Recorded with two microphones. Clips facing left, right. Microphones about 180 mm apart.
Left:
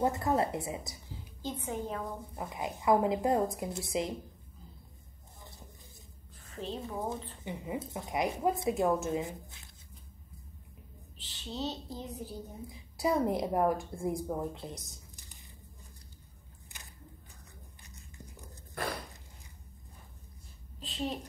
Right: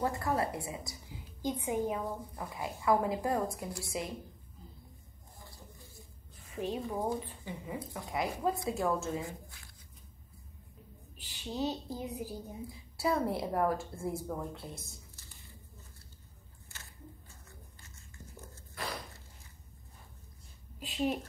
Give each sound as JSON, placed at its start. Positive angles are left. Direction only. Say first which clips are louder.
{"t": 0.0, "sound": "speech", "louder": "left 3 dB", "side_deg": 20}
{"t": 1.0, "sound": "a woman's voice", "louder": "right 4 dB", "side_deg": -15}
{"t": 2.3, "sound": "speech", "louder": "left 2 dB", "side_deg": 20}
{"t": 5.4, "sound": "a sound", "louder": "even", "side_deg": 20}
{"t": 6.5, "sound": "a woman's voice", "louder": "right 3 dB", "side_deg": -10}
{"t": 7.4, "sound": "speech", "louder": "left 3 dB", "side_deg": 20}
{"t": 11.1, "sound": "a woman's voice", "louder": "right 3 dB", "side_deg": -10}
{"t": 12.6, "sound": "a woman's voice", "louder": "left 2 dB", "side_deg": 20}
{"t": 16.7, "sound": "a sound", "louder": "right 2 dB", "side_deg": 15}
{"t": 20.8, "sound": "a sound", "louder": "right 3 dB", "side_deg": -10}